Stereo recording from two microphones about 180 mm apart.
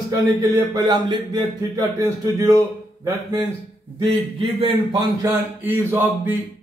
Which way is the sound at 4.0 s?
30° right (ahead or behind).